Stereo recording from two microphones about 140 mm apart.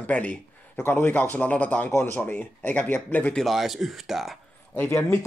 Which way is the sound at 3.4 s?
Centre (ahead or behind).